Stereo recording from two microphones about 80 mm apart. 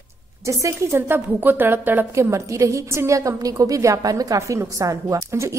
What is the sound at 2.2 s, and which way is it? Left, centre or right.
A woman's voice, right.